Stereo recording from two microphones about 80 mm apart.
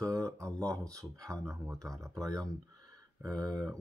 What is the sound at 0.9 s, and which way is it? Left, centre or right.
Speech, right.